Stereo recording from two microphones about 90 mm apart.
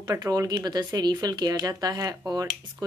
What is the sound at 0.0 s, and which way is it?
Speech, 35° right (ahead or behind).